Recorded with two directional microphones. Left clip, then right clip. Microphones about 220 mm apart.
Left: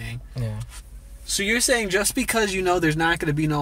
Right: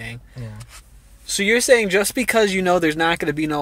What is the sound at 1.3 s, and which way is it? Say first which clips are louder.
Speech: right 6 dB; 40° right (ahead or behind).